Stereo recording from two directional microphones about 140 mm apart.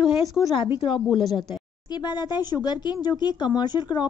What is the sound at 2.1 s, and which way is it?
Speech, 30° left (ahead or behind).